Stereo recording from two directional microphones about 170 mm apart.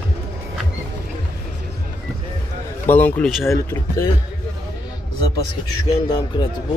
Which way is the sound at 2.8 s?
10° left (ahead or behind).